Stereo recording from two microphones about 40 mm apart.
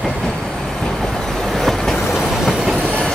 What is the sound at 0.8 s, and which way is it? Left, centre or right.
Train, centre.